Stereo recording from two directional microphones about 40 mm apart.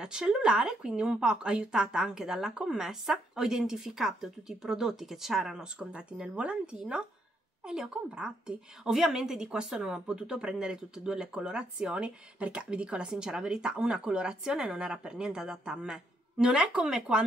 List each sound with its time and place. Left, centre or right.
0.0 s speech: centre